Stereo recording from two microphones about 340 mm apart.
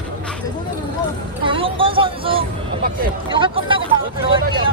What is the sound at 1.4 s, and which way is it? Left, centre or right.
Speech, centre.